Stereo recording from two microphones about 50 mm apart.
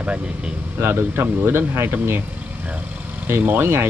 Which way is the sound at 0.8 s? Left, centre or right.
Right.